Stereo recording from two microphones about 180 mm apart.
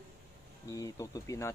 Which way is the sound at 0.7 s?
20° left (ahead or behind).